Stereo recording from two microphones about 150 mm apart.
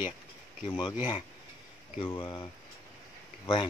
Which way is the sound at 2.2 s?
30° left (ahead or behind).